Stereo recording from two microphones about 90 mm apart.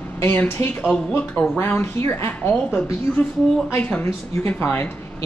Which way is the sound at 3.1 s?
15° left (ahead or behind).